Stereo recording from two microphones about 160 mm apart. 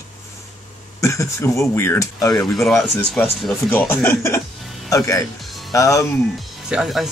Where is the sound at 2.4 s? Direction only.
5° left (ahead or behind).